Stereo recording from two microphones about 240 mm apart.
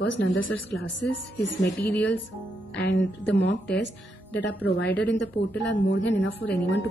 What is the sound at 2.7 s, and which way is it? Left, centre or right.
Speech, left.